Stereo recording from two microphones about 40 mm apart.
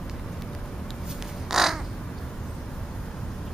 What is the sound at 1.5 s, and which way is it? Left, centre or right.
Crow, centre.